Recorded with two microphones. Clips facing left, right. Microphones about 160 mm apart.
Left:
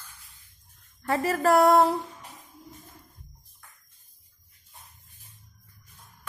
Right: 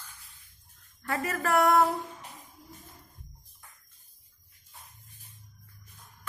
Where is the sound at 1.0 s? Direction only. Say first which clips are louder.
Left 7 dB; 30° left (ahead or behind).